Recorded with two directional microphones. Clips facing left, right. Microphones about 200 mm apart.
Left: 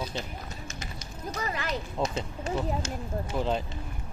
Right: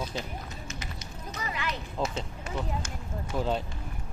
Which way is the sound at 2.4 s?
25° left (ahead or behind).